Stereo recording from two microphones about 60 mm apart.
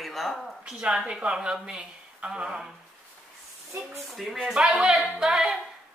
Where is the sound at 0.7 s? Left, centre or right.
Centre.